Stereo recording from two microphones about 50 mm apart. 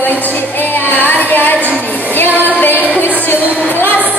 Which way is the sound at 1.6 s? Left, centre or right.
Right.